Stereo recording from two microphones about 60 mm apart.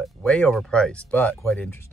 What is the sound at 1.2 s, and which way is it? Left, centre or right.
Speech, left.